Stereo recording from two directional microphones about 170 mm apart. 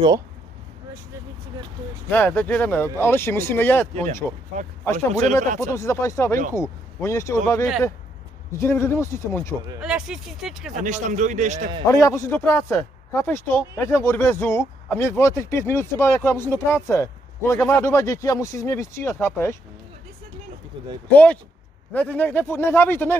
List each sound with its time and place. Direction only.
2.0 s speech: 10° left (ahead or behind)
3.9 s a man's voice: 45° right (ahead or behind)
5.7 s speech: 15° left (ahead or behind)
8.5 s speech: 15° left (ahead or behind)
9.8 s speech: 5° right (ahead or behind)
10.7 s a man's voice: 45° right (ahead or behind)
11.9 s speech: 20° left (ahead or behind)
20.7 s speech: 30° right (ahead or behind)
21.1 s speech: 10° left (ahead or behind)